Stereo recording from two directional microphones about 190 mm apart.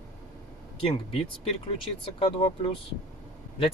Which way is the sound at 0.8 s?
30° left (ahead or behind).